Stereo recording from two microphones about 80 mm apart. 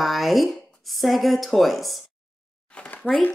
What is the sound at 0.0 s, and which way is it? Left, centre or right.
Speech, centre.